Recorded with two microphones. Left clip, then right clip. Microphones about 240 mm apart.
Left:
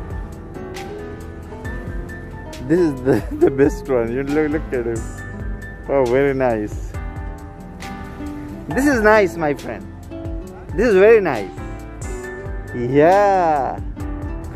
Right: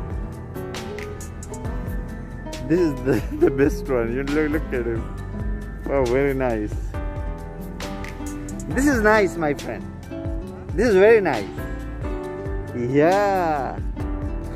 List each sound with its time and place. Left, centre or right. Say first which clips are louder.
3.1 s speech: left 4 dB; centre
8.7 s speech: left 4 dB; centre
12.7 s speech: left 5 dB; centre